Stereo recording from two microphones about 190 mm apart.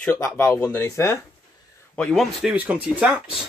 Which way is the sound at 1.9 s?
5° left (ahead or behind).